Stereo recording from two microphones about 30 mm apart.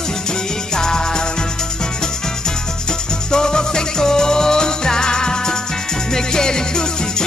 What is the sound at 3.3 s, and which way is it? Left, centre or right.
Music, left.